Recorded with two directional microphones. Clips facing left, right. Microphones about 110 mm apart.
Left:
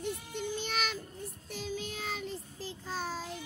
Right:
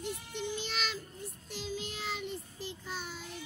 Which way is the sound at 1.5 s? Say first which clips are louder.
Left 1 dB; 50° left (ahead or behind).